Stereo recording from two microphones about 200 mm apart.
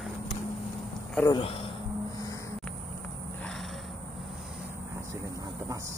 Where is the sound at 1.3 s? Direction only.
25° left (ahead or behind).